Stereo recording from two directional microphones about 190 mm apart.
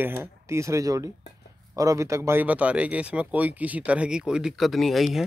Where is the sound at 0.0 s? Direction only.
10° right (ahead or behind).